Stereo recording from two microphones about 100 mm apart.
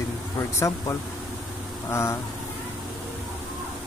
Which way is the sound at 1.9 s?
25° left (ahead or behind).